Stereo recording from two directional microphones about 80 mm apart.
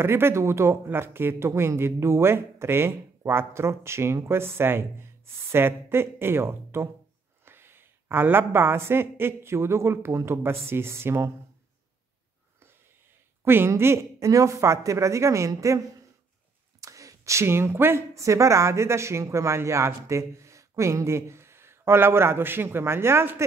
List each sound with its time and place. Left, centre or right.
0.0 s speech: right
13.4 s speech: right
16.8 s speech: right